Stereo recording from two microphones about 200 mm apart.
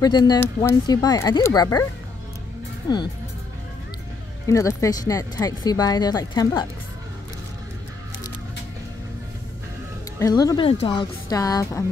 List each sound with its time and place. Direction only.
0.0 s speech: 20° left (ahead or behind)
4.5 s speech: 15° left (ahead or behind)
10.1 s speech: 15° left (ahead or behind)